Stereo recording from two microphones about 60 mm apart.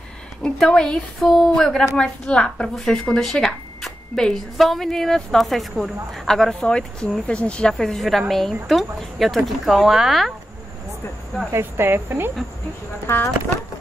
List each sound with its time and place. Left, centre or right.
0.4 s speech: centre
7.7 s speech: centre
11.5 s speech: right
13.0 s speech: left